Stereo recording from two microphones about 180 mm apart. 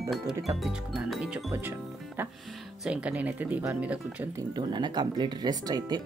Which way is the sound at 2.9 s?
5° right (ahead or behind).